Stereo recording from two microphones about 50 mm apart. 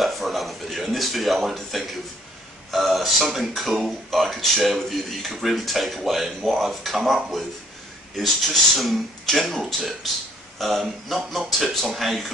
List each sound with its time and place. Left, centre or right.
0.0 s a sound: centre
2.7 s speech: centre
8.7 s speech: centre